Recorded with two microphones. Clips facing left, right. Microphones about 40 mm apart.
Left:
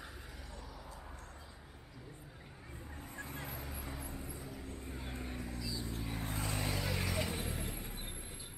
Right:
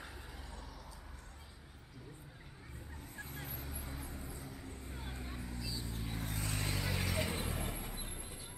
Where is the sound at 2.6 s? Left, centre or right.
Centre.